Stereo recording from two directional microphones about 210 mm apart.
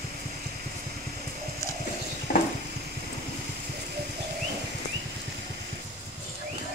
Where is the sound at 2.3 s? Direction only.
40° left (ahead or behind).